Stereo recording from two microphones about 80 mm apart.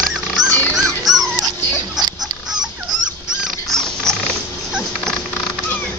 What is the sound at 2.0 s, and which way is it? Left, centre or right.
Fowl, right.